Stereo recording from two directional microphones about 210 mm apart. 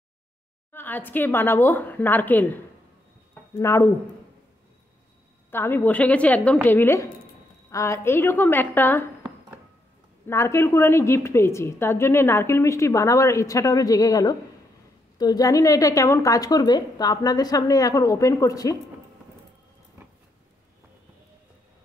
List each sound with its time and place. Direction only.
0.7 s a woman's voice: 10° left (ahead or behind)
5.5 s a woman's voice: 10° left (ahead or behind)
10.2 s a woman's voice: 15° left (ahead or behind)